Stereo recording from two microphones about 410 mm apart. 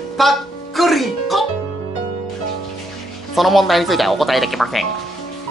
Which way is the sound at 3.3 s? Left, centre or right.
Centre.